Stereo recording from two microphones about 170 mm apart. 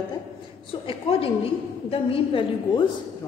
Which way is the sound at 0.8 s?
35° left (ahead or behind).